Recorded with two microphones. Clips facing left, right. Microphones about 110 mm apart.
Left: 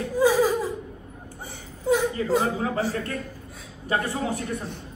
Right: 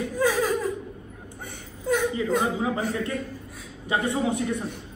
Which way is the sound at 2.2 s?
Centre (ahead or behind).